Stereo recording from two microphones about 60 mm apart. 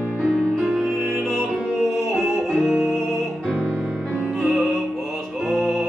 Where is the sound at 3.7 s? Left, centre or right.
Centre.